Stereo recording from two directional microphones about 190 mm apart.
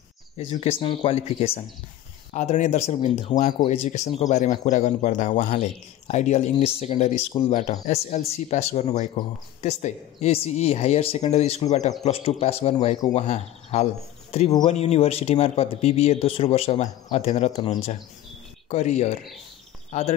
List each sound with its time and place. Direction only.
0.4 s speech: 30° left (ahead or behind)